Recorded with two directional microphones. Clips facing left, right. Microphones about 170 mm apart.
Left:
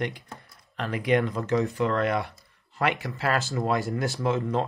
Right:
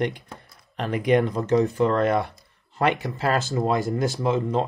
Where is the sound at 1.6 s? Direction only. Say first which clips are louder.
Right 4 dB; 40° right (ahead or behind).